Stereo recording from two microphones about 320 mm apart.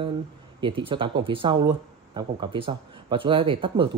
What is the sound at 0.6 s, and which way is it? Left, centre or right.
Speech, centre.